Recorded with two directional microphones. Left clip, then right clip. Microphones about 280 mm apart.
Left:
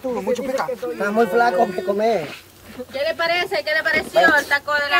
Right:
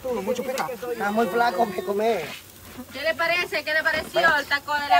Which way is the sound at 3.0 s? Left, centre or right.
Left.